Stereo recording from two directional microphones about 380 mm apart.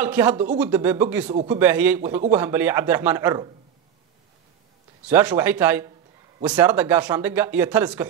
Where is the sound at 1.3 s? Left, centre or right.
Centre.